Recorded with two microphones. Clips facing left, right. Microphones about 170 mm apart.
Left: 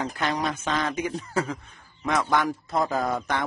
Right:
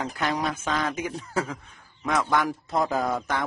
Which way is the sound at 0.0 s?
5° right (ahead or behind).